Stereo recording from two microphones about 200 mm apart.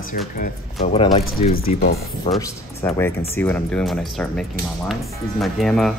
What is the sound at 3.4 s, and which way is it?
Speech, 10° left (ahead or behind).